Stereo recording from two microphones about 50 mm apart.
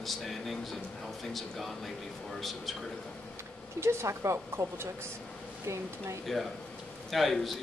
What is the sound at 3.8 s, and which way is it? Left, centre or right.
Speech, right.